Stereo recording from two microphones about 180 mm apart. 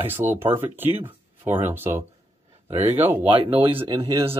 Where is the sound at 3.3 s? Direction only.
30° right (ahead or behind).